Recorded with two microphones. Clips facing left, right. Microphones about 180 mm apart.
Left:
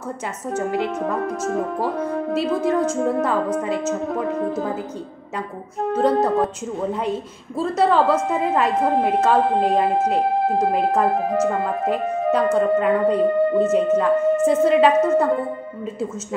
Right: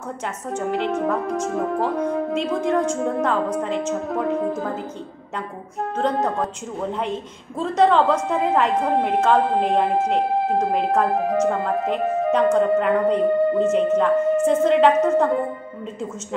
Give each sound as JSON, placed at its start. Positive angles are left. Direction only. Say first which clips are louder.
{"t": 0.5, "sound": "a woman's voice", "louder": "left 2 dB", "side_deg": 10}
{"t": 2.3, "sound": "speech", "louder": "left 3 dB", "side_deg": 5}
{"t": 5.9, "sound": "a woman's voice", "louder": "left 4 dB", "side_deg": 10}